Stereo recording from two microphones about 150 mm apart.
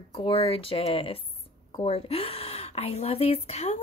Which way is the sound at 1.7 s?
35° left (ahead or behind).